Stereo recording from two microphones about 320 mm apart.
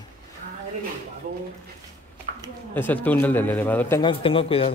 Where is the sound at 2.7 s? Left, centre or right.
Centre.